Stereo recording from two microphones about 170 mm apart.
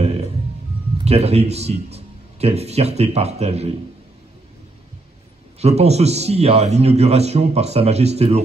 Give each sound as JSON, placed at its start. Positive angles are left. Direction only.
{"t": 0.9, "sound": "a man's voice", "side_deg": -40}
{"t": 5.6, "sound": "a man's voice", "side_deg": -40}